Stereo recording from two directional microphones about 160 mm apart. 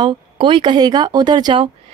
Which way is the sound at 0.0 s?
30° right (ahead or behind).